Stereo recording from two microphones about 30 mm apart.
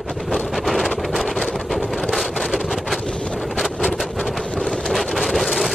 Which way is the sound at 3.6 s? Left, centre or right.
Centre.